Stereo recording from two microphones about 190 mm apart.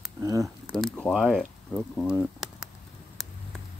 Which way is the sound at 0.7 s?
5° left (ahead or behind).